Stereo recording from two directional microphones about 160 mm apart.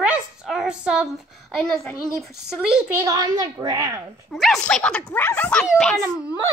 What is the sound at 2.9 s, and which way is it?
A child's voice, 20° right (ahead or behind).